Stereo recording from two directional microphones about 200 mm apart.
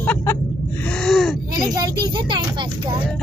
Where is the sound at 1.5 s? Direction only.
20° right (ahead or behind).